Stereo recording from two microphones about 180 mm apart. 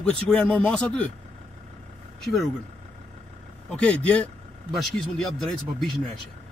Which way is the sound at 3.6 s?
5° left (ahead or behind).